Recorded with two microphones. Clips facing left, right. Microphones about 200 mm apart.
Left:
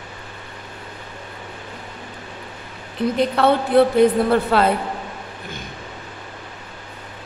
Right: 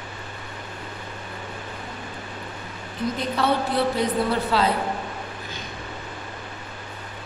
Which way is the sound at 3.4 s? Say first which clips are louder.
Left 7 dB; 55° left (ahead or behind).